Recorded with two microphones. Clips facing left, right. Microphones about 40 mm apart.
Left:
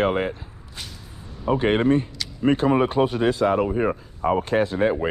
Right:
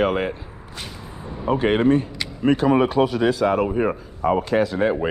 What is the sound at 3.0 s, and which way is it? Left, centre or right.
Speech, right.